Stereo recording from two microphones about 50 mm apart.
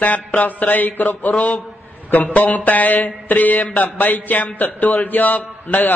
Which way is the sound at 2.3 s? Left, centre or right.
Left.